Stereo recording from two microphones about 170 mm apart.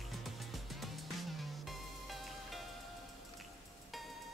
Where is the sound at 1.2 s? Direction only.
Centre (ahead or behind).